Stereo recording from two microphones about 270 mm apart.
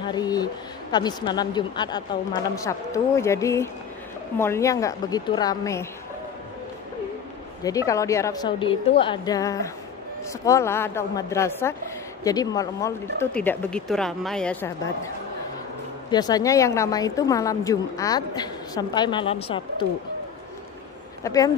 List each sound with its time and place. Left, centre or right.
0.0 s a woman's voice: centre
7.6 s a woman's voice: centre
16.1 s a woman's voice: centre
21.2 s speech: centre